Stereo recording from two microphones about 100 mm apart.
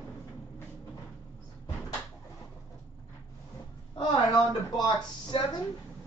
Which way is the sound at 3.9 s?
45° left (ahead or behind).